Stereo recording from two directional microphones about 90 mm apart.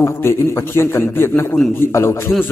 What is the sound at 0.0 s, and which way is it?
A man's voice, 30° left (ahead or behind).